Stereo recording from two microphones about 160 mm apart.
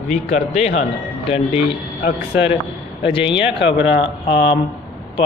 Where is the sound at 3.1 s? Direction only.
35° left (ahead or behind).